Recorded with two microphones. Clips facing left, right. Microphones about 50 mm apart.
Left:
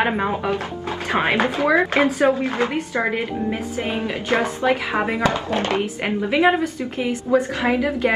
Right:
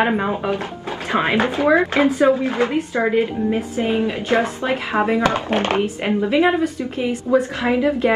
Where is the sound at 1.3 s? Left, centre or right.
Left.